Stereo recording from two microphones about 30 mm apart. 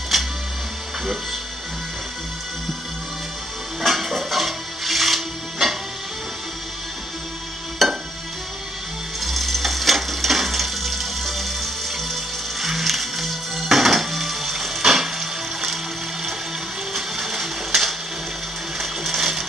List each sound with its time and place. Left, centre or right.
0.1 s music: centre
3.8 s music: centre
7.8 s music: centre
9.2 s music: centre
16.9 s blender: centre
18.8 s music: centre